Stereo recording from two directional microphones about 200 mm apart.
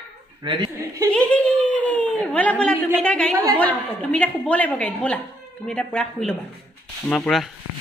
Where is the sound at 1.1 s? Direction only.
5° left (ahead or behind).